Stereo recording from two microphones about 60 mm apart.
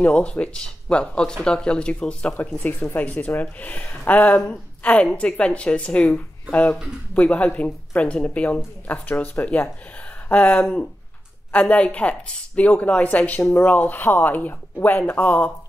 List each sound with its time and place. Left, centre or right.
0.1 s speech: centre
2.5 s speech: left
13.4 s speech: left